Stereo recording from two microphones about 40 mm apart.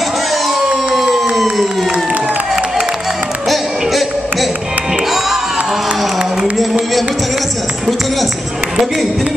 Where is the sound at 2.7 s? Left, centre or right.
Centre.